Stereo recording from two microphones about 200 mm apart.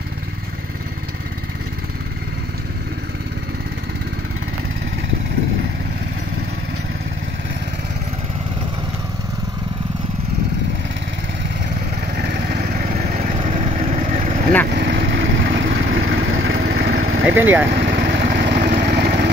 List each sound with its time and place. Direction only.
12.2 s vehicle: 50° right (ahead or behind)
12.5 s vehicle: 40° right (ahead or behind)
14.8 s vehicle: 55° right (ahead or behind)
17.3 s speech: 10° right (ahead or behind)
17.7 s vehicle: 45° right (ahead or behind)